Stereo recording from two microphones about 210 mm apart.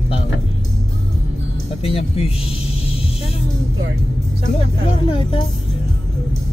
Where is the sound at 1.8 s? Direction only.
30° left (ahead or behind).